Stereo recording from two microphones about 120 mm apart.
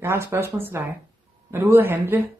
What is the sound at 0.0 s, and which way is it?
Speech, 20° right (ahead or behind).